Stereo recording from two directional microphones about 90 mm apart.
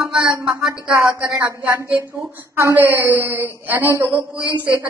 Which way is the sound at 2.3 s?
25° right (ahead or behind).